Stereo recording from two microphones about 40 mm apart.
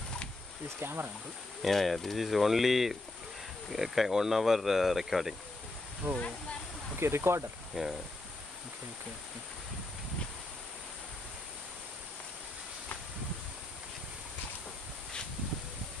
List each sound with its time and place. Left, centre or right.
0.7 s speech: right
1.6 s speech: centre
6.0 s speech: right
7.0 s speech: right
7.7 s speech: centre